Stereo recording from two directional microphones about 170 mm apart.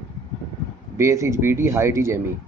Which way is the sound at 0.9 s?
15° right (ahead or behind).